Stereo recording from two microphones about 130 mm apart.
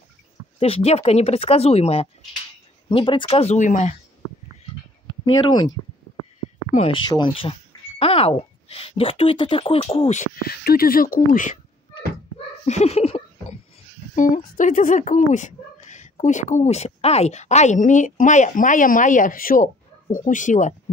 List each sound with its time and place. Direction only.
0.6 s speech: 50° left (ahead or behind)
3.4 s speech: 70° left (ahead or behind)
5.2 s speech: 35° left (ahead or behind)
6.9 s speech: 35° left (ahead or behind)
10.9 s speech: 90° left
12.6 s a sound: 55° left (ahead or behind)
14.1 s speech: 85° left